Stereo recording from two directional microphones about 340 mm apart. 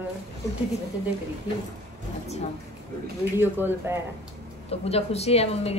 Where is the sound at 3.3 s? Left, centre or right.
Centre.